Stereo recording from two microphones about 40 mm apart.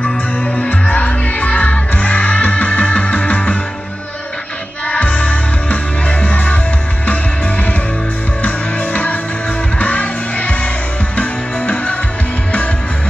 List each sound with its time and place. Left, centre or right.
0.6 s music: left
4.8 s music: left